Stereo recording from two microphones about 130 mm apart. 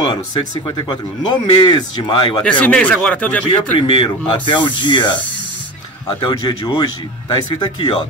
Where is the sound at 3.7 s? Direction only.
35° left (ahead or behind).